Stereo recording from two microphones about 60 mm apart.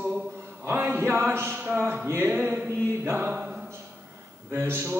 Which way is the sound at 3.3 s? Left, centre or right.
Centre.